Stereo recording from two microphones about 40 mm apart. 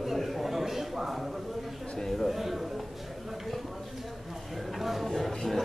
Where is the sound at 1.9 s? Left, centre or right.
Centre.